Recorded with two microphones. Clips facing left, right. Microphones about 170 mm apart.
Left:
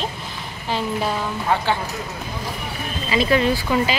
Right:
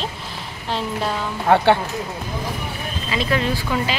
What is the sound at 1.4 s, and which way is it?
Speech, 60° right (ahead or behind).